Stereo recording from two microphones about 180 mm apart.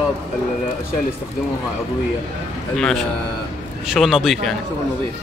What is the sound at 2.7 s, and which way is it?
Speech, centre (ahead or behind).